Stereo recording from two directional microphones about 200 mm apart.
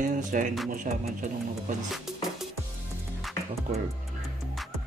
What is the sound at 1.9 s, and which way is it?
Music, centre (ahead or behind).